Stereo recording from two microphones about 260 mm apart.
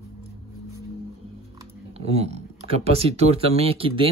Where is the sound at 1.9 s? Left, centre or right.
Right.